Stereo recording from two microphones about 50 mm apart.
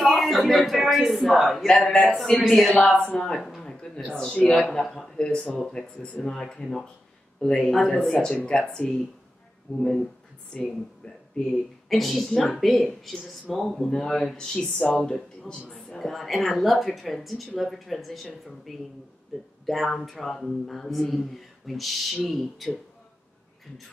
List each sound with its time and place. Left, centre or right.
0.0 s speech: centre
3.6 s a sound: centre
4.6 s speech: centre
7.6 s speech: centre
11.9 s speech: centre
16.0 s speech: centre